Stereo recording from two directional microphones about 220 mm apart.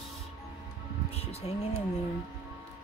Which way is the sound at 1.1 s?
25° left (ahead or behind).